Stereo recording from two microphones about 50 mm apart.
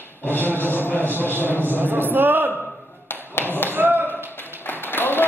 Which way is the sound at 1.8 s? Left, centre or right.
Right.